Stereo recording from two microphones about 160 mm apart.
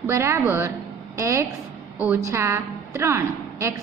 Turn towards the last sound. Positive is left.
turn(degrees=-15)  # may be behind; listen again after turning